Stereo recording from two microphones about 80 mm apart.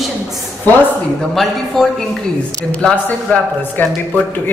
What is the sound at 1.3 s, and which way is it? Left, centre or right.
Speech, centre.